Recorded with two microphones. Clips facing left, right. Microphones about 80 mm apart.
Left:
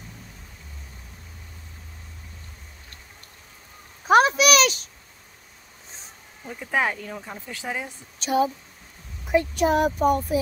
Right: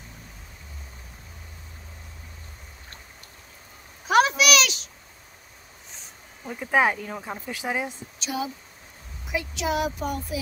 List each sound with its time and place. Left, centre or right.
4.1 s a sound: left
6.4 s speech: centre
8.2 s speech: left